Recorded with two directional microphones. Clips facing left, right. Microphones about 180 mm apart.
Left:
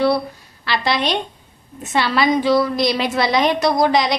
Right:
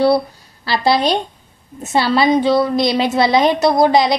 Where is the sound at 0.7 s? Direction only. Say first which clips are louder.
Right 5 dB; 35° right (ahead or behind).